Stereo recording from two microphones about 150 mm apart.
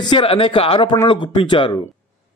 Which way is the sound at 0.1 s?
35° left (ahead or behind).